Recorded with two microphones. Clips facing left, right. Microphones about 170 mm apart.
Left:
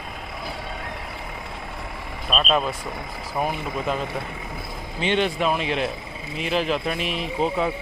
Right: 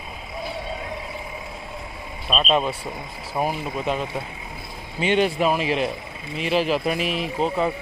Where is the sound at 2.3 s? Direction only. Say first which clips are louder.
Right 1 dB; centre (ahead or behind).